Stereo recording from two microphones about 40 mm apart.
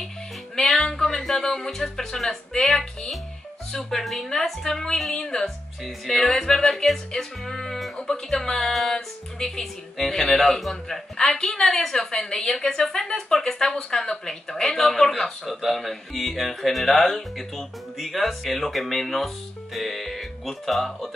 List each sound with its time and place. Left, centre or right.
0.6 s music: centre
2.6 s speech: centre
7.1 s music: centre
8.3 s speech: centre